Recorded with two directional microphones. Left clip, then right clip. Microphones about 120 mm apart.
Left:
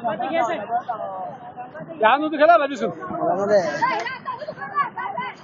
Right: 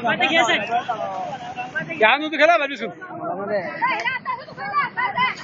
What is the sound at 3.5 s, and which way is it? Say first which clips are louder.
Speech: left 4 dB; 30° left (ahead or behind).